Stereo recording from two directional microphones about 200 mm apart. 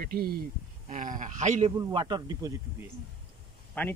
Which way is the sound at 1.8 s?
20° right (ahead or behind).